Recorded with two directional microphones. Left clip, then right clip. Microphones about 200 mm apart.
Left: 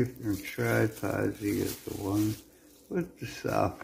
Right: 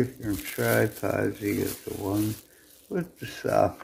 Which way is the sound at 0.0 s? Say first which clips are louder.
Right 3 dB; 15° right (ahead or behind).